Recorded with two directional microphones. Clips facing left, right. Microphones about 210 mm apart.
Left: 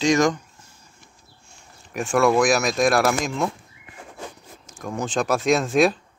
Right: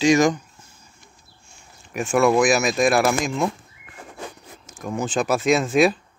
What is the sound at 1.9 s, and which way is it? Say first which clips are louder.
Speech: right 1 dB; 5° right (ahead or behind).